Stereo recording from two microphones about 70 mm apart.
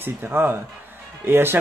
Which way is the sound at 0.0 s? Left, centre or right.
Right.